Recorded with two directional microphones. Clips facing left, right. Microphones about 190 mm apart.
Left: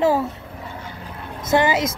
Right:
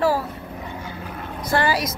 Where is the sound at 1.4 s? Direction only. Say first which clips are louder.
Left 3 dB; 20° left (ahead or behind).